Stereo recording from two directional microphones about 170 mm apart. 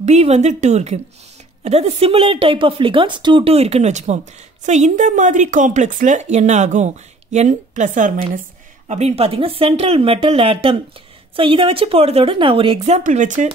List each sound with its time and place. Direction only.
0.0 s speech: 40° right (ahead or behind)